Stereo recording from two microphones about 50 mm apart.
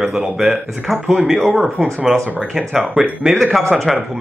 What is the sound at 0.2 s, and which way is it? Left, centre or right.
Speech, centre.